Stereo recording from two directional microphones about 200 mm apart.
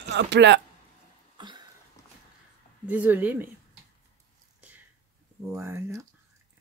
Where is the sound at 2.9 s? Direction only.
10° right (ahead or behind).